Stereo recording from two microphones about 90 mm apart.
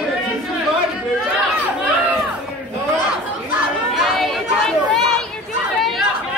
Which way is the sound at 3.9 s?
Centre (ahead or behind).